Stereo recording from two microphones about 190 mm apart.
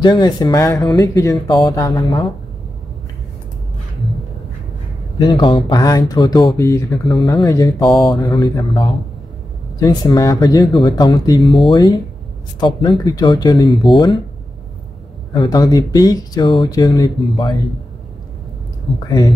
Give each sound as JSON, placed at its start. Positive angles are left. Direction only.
{"t": 0.0, "sound": "speech", "side_deg": 25}
{"t": 5.2, "sound": "speech", "side_deg": 25}
{"t": 15.3, "sound": "speech", "side_deg": 25}
{"t": 19.0, "sound": "speech", "side_deg": 20}